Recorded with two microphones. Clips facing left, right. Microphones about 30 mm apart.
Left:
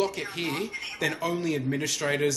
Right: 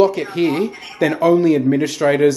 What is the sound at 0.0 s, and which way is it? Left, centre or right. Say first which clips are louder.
Speech: right 13 dB; right.